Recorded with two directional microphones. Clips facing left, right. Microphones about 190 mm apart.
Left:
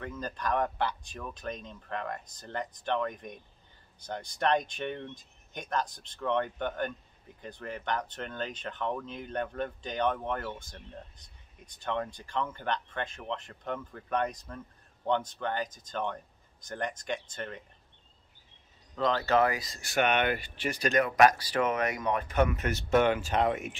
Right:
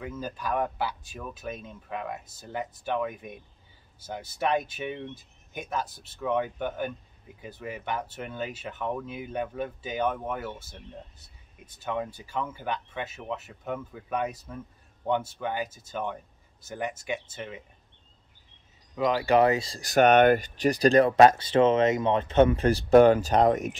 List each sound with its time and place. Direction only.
0.0 s speech: 5° right (ahead or behind)
18.9 s speech: 10° right (ahead or behind); by 23.8 s 40° right (ahead or behind)